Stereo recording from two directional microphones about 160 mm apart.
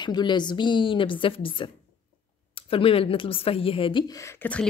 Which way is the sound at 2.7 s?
35° left (ahead or behind).